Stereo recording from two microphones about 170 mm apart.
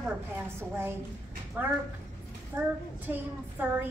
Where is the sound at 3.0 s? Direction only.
10° right (ahead or behind).